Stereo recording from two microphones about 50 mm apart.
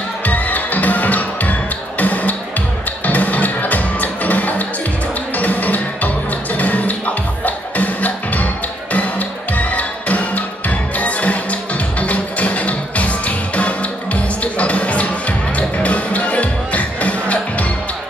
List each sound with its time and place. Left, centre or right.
0.2 s music: left
9.6 s music: left
14.4 s music: left